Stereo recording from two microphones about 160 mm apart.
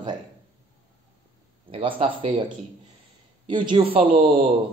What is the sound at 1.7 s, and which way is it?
Speech, 35° right (ahead or behind).